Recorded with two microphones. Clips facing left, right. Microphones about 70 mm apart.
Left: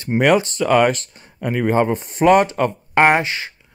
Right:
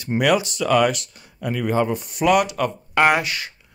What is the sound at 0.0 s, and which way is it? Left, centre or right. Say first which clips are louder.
Speech: left 4 dB; left.